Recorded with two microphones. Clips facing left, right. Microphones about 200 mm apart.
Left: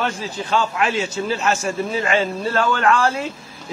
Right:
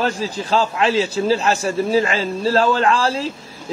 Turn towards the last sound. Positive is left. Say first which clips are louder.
# even
turn(degrees=-35)  # may be behind; listen again after turning